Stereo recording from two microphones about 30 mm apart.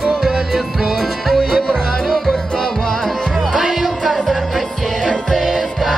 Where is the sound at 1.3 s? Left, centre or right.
Centre.